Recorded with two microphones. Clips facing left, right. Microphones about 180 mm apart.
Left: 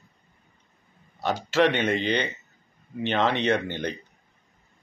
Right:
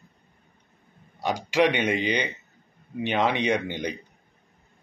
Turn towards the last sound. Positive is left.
turn(degrees=-15)  # may be behind; listen again after turning